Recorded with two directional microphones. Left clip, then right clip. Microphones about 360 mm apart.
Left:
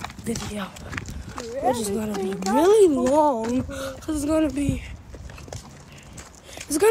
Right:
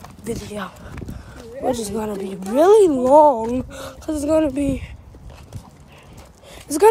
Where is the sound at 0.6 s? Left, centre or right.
Centre.